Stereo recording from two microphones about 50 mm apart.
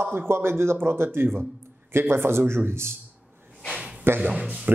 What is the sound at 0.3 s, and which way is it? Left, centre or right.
Speech, right.